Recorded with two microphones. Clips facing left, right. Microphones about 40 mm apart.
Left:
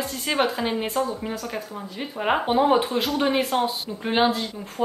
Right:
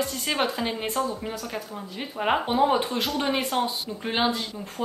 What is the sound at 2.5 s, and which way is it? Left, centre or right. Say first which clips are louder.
A woman's voice: left 5 dB; centre.